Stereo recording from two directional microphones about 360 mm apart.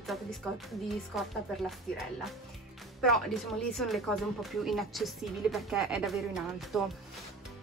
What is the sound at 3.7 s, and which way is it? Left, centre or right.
Speech, centre.